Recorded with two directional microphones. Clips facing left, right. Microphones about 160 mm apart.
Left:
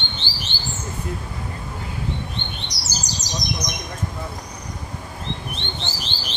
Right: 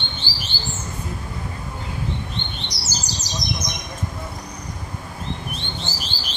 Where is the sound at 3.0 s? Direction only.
15° left (ahead or behind).